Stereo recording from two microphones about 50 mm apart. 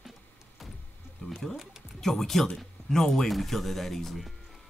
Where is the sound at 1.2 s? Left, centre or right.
Centre.